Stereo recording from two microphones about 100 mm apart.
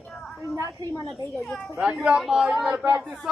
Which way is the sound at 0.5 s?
35° right (ahead or behind).